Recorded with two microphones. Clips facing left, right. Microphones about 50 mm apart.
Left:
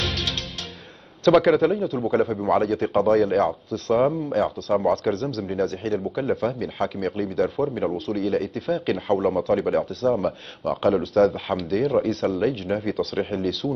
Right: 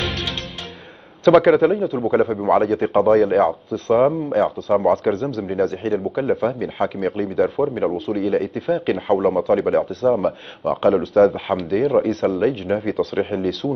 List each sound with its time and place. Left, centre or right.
0.0 s music: centre
1.2 s speech: centre